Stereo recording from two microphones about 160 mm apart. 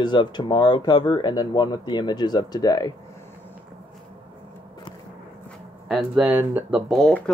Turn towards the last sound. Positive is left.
turn(degrees=0)  # may be behind; listen again after turning